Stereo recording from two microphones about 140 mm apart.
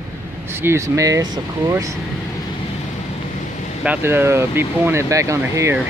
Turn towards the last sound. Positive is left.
turn(degrees=-20)  # may be behind; listen again after turning